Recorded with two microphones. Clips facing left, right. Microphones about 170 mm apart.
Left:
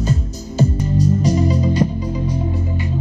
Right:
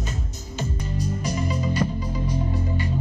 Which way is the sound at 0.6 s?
35° left (ahead or behind).